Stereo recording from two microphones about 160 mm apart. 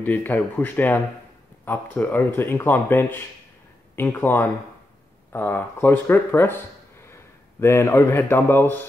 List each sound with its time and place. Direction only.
0.0 s speech: 10° left (ahead or behind)
7.6 s speech: 15° left (ahead or behind)